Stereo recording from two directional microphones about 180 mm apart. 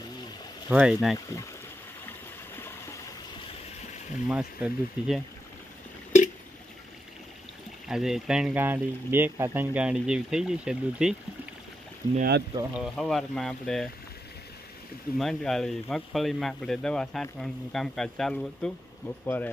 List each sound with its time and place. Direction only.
0.7 s speech: 5° right (ahead or behind)
2.0 s a sound: 10° left (ahead or behind)
4.3 s speech: 5° right (ahead or behind)
7.9 s speech: centre (ahead or behind)
12.2 s speech: 65° right (ahead or behind)
12.7 s speech: centre (ahead or behind)
15.1 s speech: centre (ahead or behind)